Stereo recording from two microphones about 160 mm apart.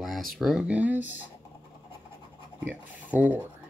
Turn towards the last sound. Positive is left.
turn(degrees=-10)  # may be behind; listen again after turning